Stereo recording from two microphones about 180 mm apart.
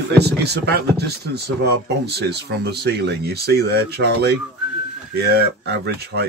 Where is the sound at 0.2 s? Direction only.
65° right (ahead or behind).